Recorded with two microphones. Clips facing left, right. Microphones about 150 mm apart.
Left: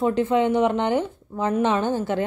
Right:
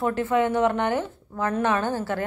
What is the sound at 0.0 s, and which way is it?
A woman's voice, 20° left (ahead or behind).